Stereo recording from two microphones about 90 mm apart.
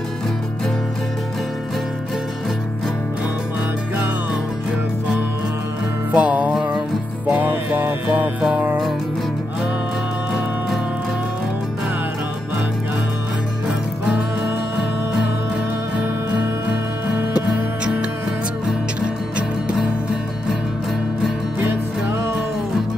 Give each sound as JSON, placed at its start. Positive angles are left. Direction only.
{"t": 6.1, "sound": "music", "side_deg": -15}
{"t": 16.0, "sound": "music", "side_deg": -20}